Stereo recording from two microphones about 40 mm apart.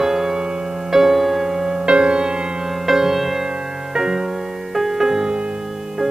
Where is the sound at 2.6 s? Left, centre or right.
Centre.